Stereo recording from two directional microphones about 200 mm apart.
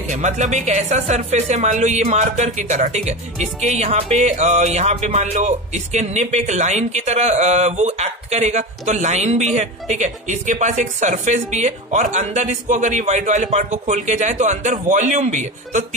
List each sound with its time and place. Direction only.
0.1 s speech: 35° right (ahead or behind)